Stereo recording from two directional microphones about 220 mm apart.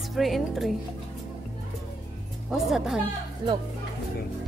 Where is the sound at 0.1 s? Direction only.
Centre (ahead or behind).